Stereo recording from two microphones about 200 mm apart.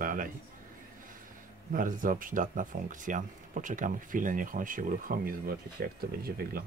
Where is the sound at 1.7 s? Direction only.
45° right (ahead or behind).